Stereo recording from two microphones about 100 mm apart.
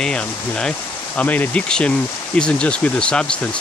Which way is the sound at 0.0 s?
10° left (ahead or behind).